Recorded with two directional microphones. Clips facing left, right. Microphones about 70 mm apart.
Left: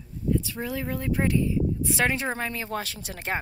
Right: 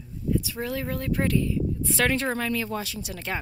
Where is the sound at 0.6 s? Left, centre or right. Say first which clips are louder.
Even; centre.